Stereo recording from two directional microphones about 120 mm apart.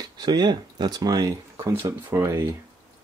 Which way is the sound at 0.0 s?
35° right (ahead or behind).